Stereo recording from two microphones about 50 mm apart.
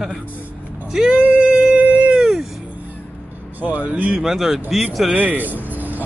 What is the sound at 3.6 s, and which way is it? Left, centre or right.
Speech, right.